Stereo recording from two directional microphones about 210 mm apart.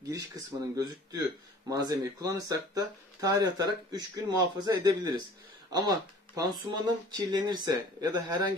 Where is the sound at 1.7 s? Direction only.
20° right (ahead or behind).